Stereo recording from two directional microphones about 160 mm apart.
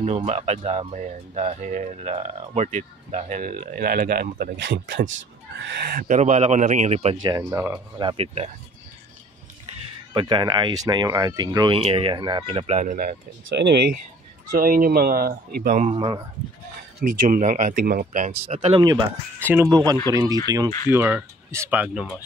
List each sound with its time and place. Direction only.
0.0 s speech: 45° right (ahead or behind); by 5.0 s 90° right
5.7 s speech: 75° right (ahead or behind); by 7.2 s 45° right (ahead or behind)
7.2 s speech: 25° right (ahead or behind)
10.1 s speech: 30° right (ahead or behind)
11.7 s speech: 35° right (ahead or behind); by 13.2 s 55° right (ahead or behind)
13.6 s speech: 90° right
14.5 s speech: 60° right (ahead or behind)
15.9 s speech: 30° right (ahead or behind)
17.0 s speech: 55° right (ahead or behind)
18.5 s speech: 40° right (ahead or behind)
19.4 s speech: 15° right (ahead or behind)
20.9 s speech: 15° right (ahead or behind)